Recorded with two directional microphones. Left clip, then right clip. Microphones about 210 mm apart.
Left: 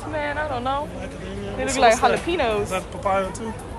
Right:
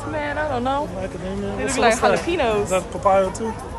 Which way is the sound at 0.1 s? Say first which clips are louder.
Right 2 dB; 15° right (ahead or behind).